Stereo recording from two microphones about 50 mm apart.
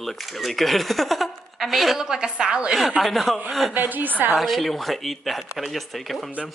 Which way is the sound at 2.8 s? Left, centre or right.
Centre.